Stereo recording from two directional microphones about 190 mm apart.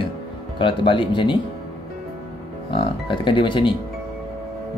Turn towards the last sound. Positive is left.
turn(degrees=25)  # may be behind; listen again after turning